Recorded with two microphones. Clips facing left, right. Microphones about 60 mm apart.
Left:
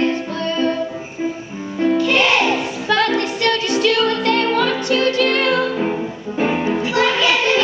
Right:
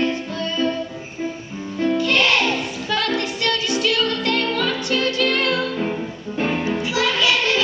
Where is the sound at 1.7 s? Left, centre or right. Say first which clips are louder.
Left 3 dB; centre.